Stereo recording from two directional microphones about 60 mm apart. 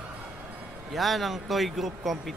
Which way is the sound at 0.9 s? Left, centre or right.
Centre.